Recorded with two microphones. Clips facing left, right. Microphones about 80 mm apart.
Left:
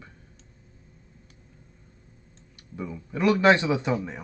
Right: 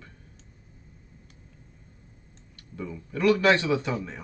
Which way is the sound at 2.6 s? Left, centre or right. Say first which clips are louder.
Left 1 dB; centre.